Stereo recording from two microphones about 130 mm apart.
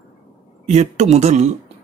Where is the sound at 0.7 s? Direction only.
55° right (ahead or behind).